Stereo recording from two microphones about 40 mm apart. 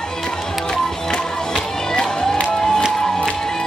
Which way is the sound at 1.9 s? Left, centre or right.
Centre.